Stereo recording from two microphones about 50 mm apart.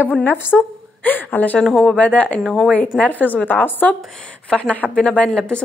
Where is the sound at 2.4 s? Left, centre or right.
Centre.